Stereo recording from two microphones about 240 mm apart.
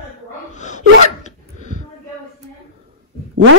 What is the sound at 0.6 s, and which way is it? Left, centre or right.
Gasp, left.